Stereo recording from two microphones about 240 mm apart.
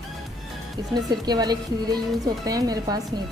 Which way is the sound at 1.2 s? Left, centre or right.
Centre.